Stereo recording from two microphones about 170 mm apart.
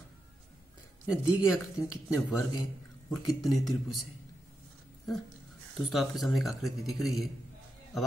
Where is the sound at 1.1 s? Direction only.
5° right (ahead or behind).